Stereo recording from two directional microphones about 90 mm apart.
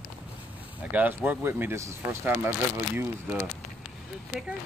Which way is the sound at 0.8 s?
20° right (ahead or behind).